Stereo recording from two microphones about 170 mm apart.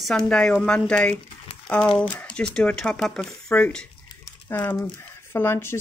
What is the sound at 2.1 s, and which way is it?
Speech, 5° left (ahead or behind).